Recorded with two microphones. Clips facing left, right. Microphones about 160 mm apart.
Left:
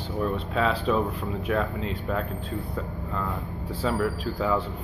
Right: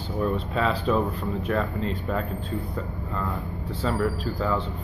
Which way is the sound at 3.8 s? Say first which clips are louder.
Even; 5° left (ahead or behind).